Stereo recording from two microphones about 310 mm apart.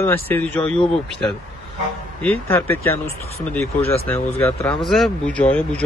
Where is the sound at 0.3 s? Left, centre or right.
Centre.